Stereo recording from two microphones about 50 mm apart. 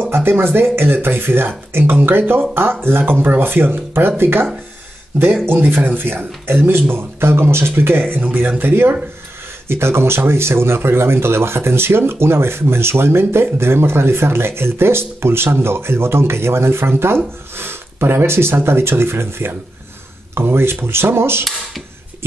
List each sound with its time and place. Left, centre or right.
0.1 s speech: right
5.5 s speech: right